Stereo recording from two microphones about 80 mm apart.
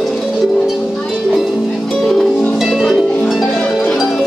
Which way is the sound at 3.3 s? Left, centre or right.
Centre.